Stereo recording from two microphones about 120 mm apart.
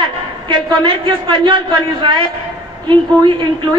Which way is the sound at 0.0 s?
40° right (ahead or behind).